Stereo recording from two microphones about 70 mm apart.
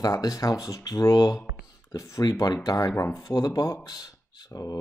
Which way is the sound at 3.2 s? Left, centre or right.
Left.